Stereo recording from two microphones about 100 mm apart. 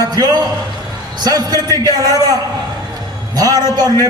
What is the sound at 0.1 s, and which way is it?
A man's voice, 45° right (ahead or behind).